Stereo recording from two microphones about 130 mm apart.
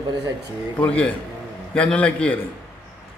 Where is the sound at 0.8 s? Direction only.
10° left (ahead or behind).